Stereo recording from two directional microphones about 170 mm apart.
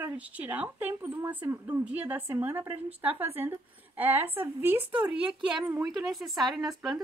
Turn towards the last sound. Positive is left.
turn(degrees=0)  # may be behind; listen again after turning